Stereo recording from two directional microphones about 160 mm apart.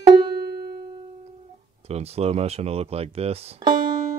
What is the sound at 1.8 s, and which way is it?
Speech, 40° right (ahead or behind).